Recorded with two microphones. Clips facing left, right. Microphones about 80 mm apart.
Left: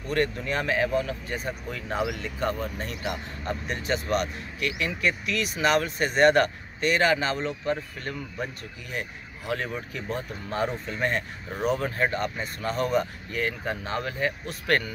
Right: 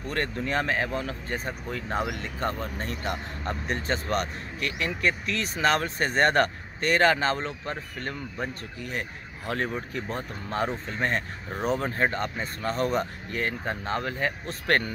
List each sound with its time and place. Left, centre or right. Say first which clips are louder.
0.1 s speech: left 2 dB; right
9.5 s speech: right 1 dB; right